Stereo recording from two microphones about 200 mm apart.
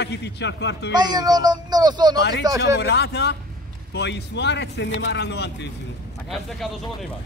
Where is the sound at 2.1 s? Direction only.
60° left (ahead or behind).